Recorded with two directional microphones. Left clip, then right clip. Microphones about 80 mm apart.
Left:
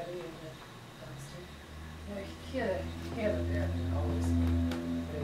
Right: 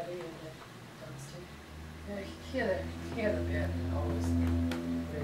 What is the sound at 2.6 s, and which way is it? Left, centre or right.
A woman's voice, centre.